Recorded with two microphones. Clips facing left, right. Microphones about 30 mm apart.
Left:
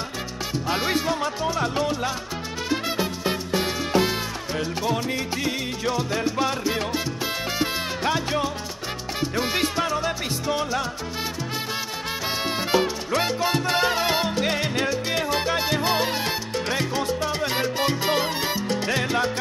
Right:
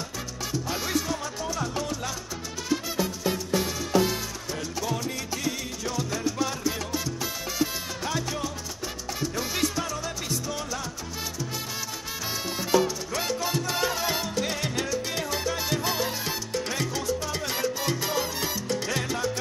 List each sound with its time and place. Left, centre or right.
0.7 s music: left
7.5 s salsa music: left
9.2 s music: left
12.4 s salsa music: left